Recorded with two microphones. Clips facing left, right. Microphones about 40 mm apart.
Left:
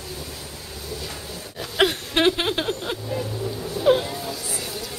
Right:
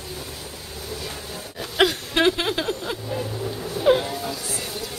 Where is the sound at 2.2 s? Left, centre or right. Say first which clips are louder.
Left 1 dB; centre.